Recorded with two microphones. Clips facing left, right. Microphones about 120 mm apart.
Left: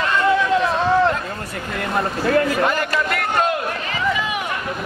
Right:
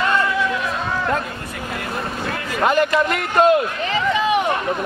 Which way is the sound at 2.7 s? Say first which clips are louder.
Right 4 dB; 20° right (ahead or behind).